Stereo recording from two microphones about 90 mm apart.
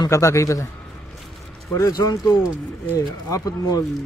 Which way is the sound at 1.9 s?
45° left (ahead or behind).